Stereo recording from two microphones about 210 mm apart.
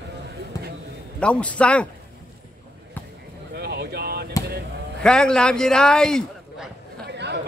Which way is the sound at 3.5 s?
50° right (ahead or behind).